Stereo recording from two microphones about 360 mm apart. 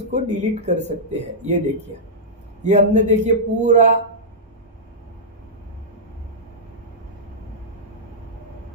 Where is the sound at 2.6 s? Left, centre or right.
Centre.